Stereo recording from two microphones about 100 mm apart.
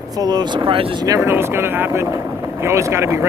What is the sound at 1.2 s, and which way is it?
Speech, 25° right (ahead or behind).